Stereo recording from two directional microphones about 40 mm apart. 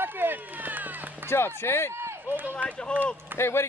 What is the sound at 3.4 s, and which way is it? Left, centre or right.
Speech, left.